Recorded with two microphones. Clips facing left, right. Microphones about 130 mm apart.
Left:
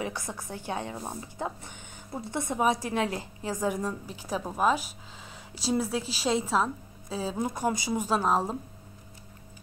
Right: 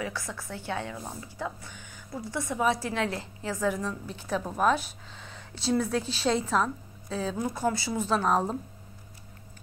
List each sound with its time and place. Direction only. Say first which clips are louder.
0.0 s a woman's voice: left 1 dB; 20° left (ahead or behind)
7.3 s a woman's voice: left 1 dB; 20° left (ahead or behind); by 8.5 s 5° left (ahead or behind)